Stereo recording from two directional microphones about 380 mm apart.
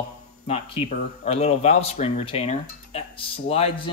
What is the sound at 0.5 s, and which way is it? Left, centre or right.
Speech, centre.